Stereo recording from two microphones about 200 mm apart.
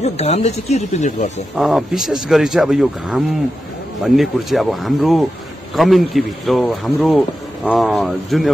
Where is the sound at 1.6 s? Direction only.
Centre (ahead or behind).